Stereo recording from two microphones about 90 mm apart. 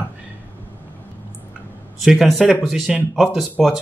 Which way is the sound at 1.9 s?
Centre (ahead or behind).